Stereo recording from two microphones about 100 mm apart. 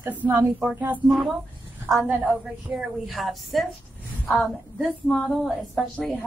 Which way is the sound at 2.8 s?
Centre (ahead or behind).